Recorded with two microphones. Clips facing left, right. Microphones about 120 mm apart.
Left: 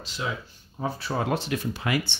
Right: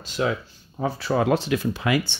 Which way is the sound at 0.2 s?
65° right (ahead or behind).